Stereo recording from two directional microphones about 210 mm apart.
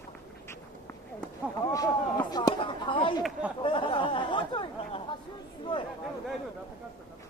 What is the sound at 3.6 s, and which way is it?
Chatter, 25° left (ahead or behind).